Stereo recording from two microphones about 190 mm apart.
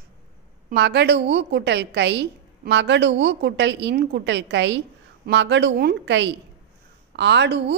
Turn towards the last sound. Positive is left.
turn(degrees=-65)  # may be behind; listen again after turning